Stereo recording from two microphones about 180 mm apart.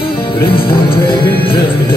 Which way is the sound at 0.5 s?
30° left (ahead or behind).